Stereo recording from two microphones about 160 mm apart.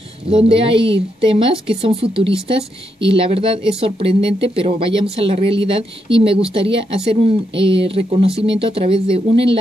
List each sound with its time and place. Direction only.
0.3 s a woman's voice: 35° right (ahead or behind)